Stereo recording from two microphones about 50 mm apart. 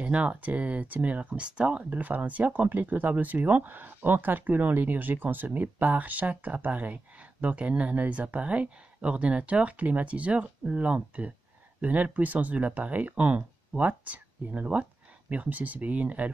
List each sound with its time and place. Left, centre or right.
0.0 s speech: right
1.9 s speech: right